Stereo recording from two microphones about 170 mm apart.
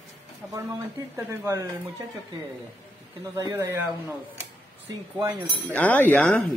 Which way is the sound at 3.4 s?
20° right (ahead or behind).